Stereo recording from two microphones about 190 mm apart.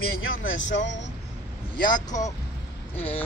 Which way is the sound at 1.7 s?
45° left (ahead or behind).